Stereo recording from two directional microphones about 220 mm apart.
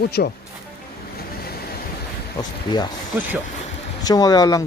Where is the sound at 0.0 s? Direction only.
45° left (ahead or behind).